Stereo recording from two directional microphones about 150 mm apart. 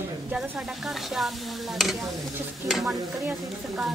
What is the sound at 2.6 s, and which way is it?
Sizzle, centre (ahead or behind).